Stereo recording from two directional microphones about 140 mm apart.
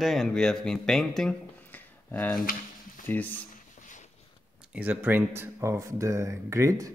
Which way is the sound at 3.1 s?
10° left (ahead or behind).